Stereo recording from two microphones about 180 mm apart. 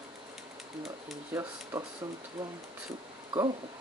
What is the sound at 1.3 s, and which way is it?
Speech, 15° right (ahead or behind).